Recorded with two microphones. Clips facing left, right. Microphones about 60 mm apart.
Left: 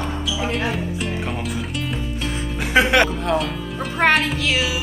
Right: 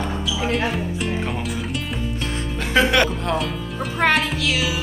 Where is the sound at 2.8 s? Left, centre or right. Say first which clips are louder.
Left 2 dB; left.